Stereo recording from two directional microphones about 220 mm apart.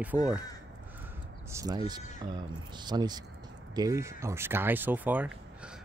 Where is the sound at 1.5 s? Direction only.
15° right (ahead or behind).